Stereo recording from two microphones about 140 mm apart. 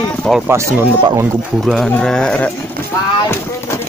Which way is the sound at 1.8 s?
10° left (ahead or behind).